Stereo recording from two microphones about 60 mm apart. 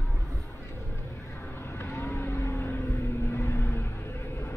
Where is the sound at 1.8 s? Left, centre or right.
Left.